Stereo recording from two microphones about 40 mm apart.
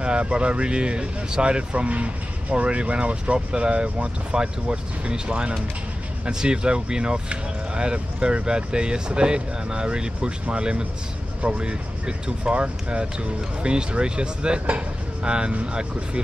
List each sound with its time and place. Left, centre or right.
0.0 s speech: right